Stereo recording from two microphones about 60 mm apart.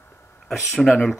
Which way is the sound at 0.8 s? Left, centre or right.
Centre.